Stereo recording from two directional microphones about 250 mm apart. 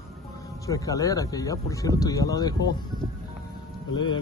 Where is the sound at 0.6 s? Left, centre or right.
Centre.